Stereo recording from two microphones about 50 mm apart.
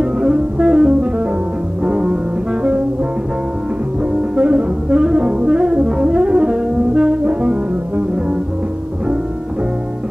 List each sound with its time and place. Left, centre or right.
0.0 s music: centre
4.0 s music: right